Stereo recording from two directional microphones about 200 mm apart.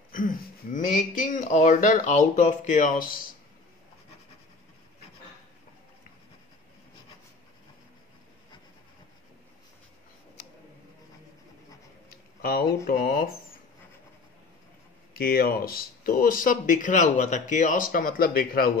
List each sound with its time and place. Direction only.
0.7 s speech: 40° left (ahead or behind)
12.1 s a sound: 50° left (ahead or behind)
12.8 s speech: 45° left (ahead or behind)
15.1 s speech: 50° left (ahead or behind)